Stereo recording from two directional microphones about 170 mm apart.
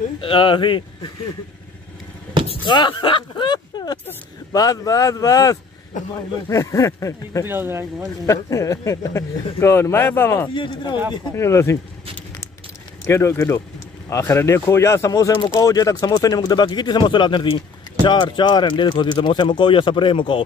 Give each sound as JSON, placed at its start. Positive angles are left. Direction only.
{"t": 0.2, "sound": "speech", "side_deg": 30}
{"t": 2.4, "sound": "speech", "side_deg": 30}
{"t": 7.4, "sound": "speech", "side_deg": -15}
{"t": 8.3, "sound": "speech", "side_deg": 15}
{"t": 10.5, "sound": "speech", "side_deg": 30}
{"t": 11.3, "sound": "speech", "side_deg": 15}
{"t": 13.0, "sound": "speech", "side_deg": 15}